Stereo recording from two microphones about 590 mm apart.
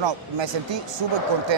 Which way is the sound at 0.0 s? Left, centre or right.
Right.